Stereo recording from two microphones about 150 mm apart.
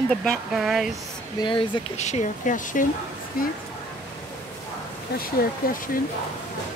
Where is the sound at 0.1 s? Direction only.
5° left (ahead or behind).